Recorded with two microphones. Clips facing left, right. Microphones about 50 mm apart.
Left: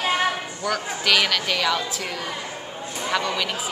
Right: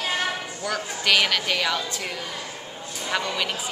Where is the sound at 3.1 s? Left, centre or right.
Centre.